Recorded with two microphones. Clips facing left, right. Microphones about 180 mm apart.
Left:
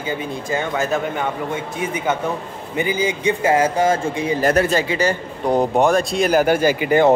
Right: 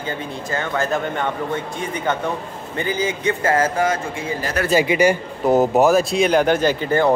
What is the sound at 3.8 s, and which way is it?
Speech, 25° left (ahead or behind).